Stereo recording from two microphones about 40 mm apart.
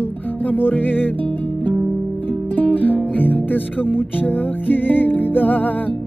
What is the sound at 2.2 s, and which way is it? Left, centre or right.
Music, left.